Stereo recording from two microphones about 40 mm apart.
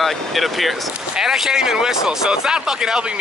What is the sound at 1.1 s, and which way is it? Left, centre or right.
Speech, centre.